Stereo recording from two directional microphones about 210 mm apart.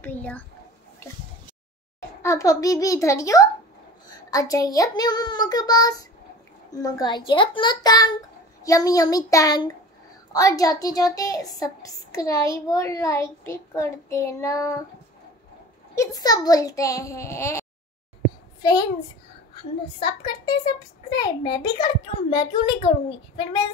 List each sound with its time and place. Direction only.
0.0 s a child's voice: 10° left (ahead or behind)
2.0 s a child's voice: 15° left (ahead or behind)
15.9 s a child's voice: 15° left (ahead or behind)